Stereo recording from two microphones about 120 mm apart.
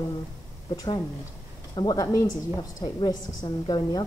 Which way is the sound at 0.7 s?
40° left (ahead or behind).